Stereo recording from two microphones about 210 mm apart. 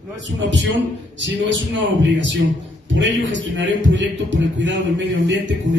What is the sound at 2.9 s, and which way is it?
A man's voice, 60° right (ahead or behind).